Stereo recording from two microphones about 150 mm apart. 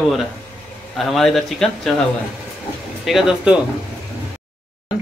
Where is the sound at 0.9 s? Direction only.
Centre (ahead or behind).